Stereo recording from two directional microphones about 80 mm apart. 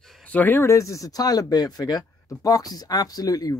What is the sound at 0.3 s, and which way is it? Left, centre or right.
Speech, left.